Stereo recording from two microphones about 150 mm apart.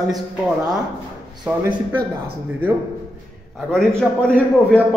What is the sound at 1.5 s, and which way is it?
Speech, 10° right (ahead or behind).